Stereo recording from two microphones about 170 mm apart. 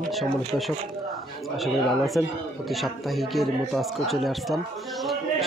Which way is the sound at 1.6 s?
Centre (ahead or behind).